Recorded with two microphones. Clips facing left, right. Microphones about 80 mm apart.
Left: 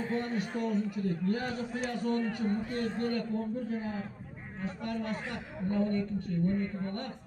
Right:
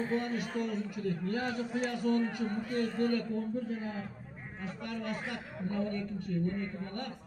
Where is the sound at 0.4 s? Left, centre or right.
Left.